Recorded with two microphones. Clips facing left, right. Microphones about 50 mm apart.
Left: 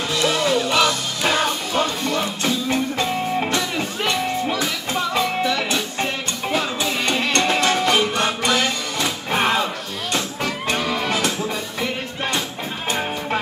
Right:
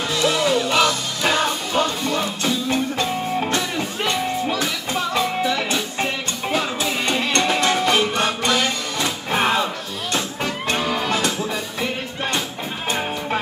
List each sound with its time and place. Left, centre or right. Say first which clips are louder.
0.1 s music: even; centre
10.8 s music: even; right
11.8 s music: left 1 dB; centre